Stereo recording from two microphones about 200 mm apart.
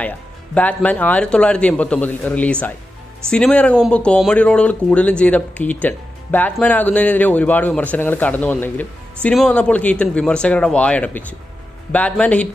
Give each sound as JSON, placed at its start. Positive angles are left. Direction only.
{"t": 0.6, "sound": "speech", "side_deg": 5}